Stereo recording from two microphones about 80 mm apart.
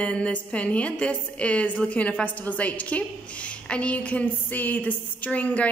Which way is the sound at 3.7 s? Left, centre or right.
Centre.